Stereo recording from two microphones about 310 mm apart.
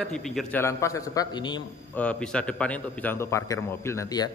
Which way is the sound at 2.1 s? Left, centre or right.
Centre.